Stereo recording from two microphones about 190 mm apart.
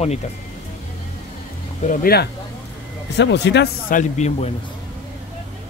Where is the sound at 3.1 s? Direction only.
65° left (ahead or behind).